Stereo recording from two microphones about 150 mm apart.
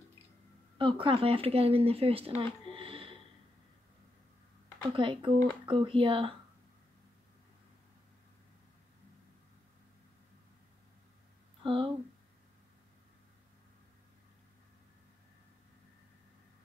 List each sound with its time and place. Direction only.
0.7 s speech: 35° right (ahead or behind)
4.9 s speech: 35° right (ahead or behind)
11.6 s a sound: 35° right (ahead or behind)